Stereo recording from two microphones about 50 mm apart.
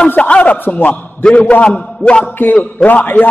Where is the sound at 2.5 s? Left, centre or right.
Left.